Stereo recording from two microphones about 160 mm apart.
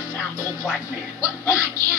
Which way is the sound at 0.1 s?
15° left (ahead or behind).